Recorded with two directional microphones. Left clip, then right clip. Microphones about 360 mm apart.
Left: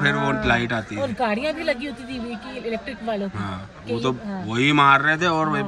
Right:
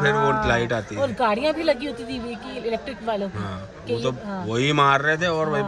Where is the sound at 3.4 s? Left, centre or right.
Centre.